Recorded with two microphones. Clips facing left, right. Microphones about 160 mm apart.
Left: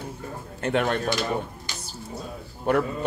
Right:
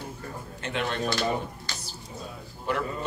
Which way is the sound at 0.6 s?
50° left (ahead or behind).